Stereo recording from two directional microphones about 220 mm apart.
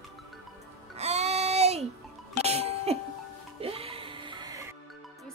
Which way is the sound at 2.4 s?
30° right (ahead or behind).